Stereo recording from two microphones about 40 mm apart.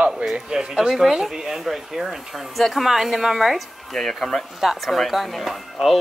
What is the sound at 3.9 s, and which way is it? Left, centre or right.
Speech, centre.